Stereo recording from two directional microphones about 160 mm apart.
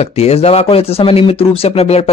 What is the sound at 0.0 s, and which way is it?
Speech, 40° left (ahead or behind).